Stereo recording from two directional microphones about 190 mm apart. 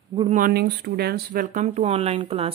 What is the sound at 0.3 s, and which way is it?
A woman's voice, 50° right (ahead or behind).